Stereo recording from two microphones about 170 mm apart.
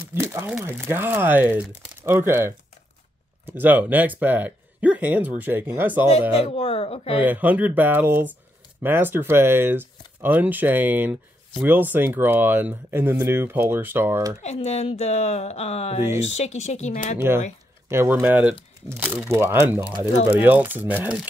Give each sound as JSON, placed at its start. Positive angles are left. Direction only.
{"t": 0.1, "sound": "speech", "side_deg": -15}
{"t": 6.4, "sound": "speech", "side_deg": 35}
{"t": 7.2, "sound": "speech", "side_deg": -10}
{"t": 14.4, "sound": "speech", "side_deg": 40}
{"t": 17.8, "sound": "speech", "side_deg": -15}